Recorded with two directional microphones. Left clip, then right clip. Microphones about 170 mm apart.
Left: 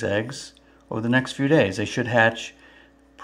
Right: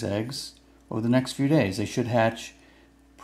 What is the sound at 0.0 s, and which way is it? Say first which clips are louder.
Speech: left 5 dB; 5° right (ahead or behind).